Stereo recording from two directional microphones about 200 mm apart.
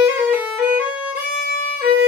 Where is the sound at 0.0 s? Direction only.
10° right (ahead or behind).